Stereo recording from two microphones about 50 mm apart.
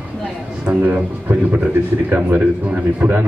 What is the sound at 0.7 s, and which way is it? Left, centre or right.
Speech, right.